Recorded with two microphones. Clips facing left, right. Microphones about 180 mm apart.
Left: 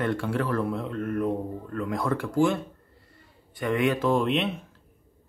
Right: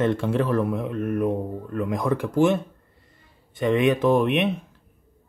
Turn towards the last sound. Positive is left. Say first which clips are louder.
# right 4 dB
turn(degrees=-15)  # may be behind; listen again after turning